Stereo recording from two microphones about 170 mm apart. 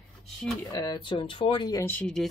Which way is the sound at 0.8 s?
25° left (ahead or behind).